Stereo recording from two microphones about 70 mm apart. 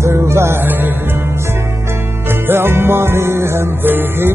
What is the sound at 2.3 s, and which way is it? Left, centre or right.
Music, right.